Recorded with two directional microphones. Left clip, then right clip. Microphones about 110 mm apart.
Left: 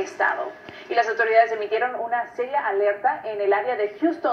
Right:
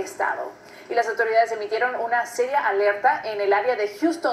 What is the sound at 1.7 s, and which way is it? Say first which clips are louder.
Speech: right 3 dB; 35° right (ahead or behind).